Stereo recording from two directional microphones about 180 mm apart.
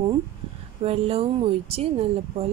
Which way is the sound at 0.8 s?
35° right (ahead or behind).